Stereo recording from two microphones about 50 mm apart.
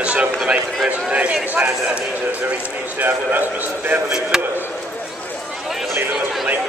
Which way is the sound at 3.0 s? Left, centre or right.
Right.